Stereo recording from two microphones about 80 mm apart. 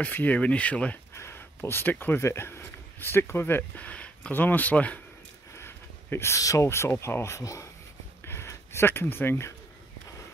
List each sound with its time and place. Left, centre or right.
0.0 s speech: centre
1.1 s speech: left
5.6 s speech: left
8.3 s a sound: left